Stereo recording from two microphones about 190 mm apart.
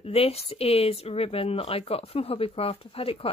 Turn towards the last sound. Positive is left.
turn(degrees=30)  # may be behind; listen again after turning